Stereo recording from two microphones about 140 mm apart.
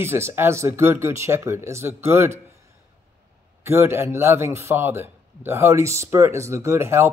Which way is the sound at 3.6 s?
15° right (ahead or behind).